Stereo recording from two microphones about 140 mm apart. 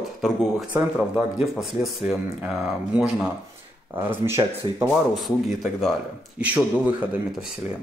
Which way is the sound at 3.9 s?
15° right (ahead or behind).